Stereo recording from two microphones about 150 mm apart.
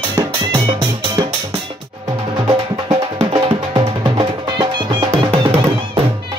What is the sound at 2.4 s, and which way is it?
Music, 35° right (ahead or behind).